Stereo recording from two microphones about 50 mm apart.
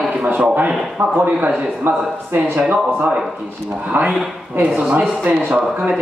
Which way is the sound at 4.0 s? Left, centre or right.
Right.